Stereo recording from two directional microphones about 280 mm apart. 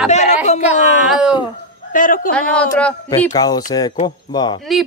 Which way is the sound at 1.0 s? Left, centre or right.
Centre.